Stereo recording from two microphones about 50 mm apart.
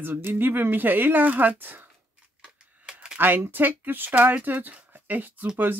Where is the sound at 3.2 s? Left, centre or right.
Right.